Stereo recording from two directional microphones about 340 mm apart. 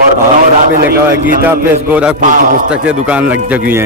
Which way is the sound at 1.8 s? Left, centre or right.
Centre.